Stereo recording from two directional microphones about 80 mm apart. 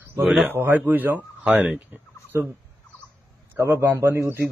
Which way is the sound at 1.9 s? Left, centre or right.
Right.